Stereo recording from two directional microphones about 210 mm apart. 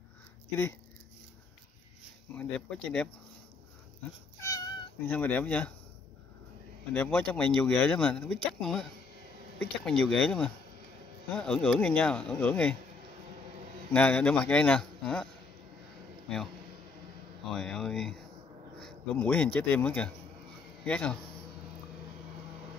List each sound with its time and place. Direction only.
2.3 s speech: 5° left (ahead or behind)
4.4 s cat: 15° left (ahead or behind)
5.0 s speech: 5° left (ahead or behind)
6.9 s speech: 5° left (ahead or behind)
13.9 s speech: 5° left (ahead or behind)
17.5 s speech: centre (ahead or behind)